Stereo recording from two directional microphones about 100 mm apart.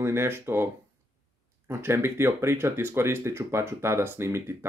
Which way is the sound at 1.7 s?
25° right (ahead or behind).